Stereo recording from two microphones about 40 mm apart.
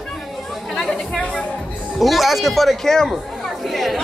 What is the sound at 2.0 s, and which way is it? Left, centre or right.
Speech, centre.